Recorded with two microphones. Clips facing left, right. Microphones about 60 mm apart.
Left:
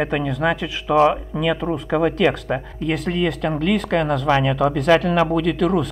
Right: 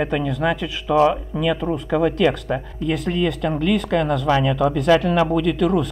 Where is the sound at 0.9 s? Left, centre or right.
Left.